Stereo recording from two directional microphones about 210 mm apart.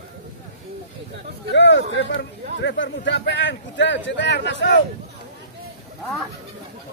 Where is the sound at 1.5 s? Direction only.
55° left (ahead or behind).